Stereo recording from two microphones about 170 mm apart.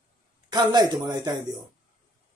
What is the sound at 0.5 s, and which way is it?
Speech, 25° right (ahead or behind).